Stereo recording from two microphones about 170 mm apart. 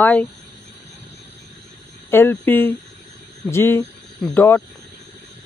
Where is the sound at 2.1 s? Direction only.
10° left (ahead or behind).